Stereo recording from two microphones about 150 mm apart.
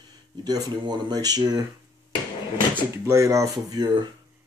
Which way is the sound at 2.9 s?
20° right (ahead or behind).